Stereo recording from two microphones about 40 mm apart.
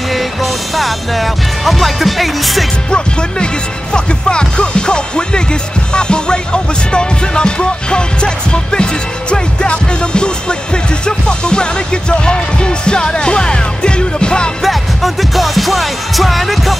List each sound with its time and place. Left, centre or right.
0.1 s music: centre
2.9 s music: left
14.6 s music: centre